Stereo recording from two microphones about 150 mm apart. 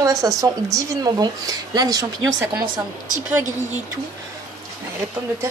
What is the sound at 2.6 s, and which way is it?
Speech, 70° right (ahead or behind).